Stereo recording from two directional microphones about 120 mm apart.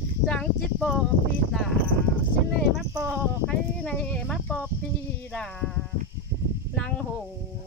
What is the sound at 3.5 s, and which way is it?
Speech, 10° left (ahead or behind).